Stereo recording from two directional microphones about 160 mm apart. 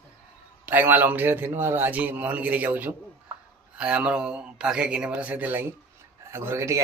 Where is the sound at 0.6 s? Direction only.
10° right (ahead or behind).